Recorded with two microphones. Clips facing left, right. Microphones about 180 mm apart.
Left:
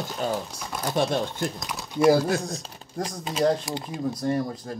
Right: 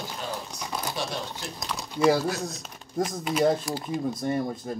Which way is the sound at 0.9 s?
55° left (ahead or behind).